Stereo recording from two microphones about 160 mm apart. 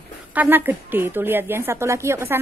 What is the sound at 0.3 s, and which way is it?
A woman's voice, 10° right (ahead or behind).